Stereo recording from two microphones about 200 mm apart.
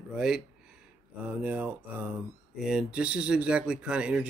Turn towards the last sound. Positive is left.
turn(degrees=-5)  # may be behind; listen again after turning